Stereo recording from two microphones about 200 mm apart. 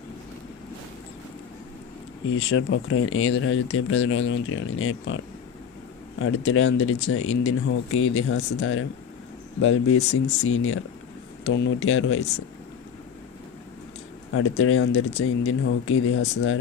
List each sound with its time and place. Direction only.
2.5 s speech: 90° left
6.1 s speech: 90° left
11.4 s speech: 75° left (ahead or behind)
14.6 s speech: 90° left